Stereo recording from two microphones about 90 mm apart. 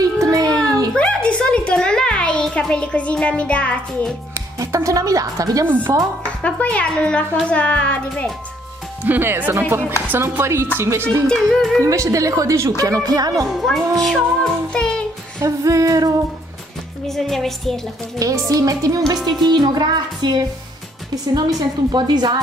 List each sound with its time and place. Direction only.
0.0 s a sound: 40° right (ahead or behind)
0.9 s a sound: 10° left (ahead or behind)
2.7 s a child's voice: 10° left (ahead or behind)
4.3 s a woman's voice: 35° right (ahead or behind)
6.4 s a child's voice: 15° left (ahead or behind)
9.0 s speech: 25° right (ahead or behind)
11.2 s music: centre (ahead or behind)
11.8 s a woman's voice: 35° right (ahead or behind)
13.5 s music: centre (ahead or behind)
15.4 s a woman's voice: 35° right (ahead or behind)
17.1 s music: 5° left (ahead or behind)
18.2 s a woman's voice: 40° right (ahead or behind)
19.2 s a woman's voice: 50° right (ahead or behind)